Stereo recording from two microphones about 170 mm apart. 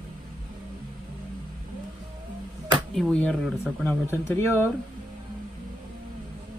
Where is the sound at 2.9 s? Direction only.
5° left (ahead or behind).